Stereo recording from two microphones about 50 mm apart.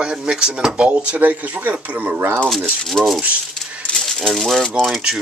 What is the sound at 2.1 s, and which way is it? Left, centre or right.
Speech, right.